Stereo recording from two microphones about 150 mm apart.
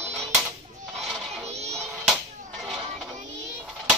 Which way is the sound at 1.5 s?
45° right (ahead or behind).